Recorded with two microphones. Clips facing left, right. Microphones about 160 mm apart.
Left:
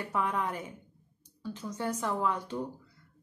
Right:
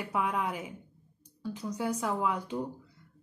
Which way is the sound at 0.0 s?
10° right (ahead or behind).